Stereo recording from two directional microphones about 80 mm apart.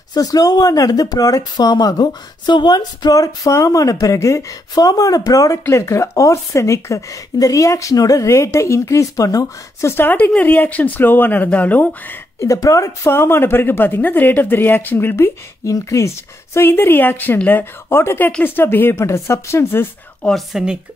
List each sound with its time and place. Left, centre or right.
0.1 s speech: left
9.8 s speech: left
12.4 s speech: left
13.1 s speech: left
16.5 s a woman's voice: left
20.3 s a woman's voice: centre